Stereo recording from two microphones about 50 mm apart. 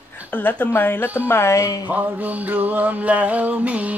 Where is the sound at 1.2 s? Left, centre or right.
Left.